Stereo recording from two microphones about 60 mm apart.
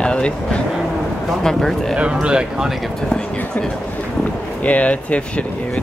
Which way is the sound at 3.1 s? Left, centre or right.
Centre.